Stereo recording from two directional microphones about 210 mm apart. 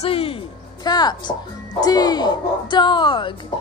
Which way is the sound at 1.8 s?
20° left (ahead or behind).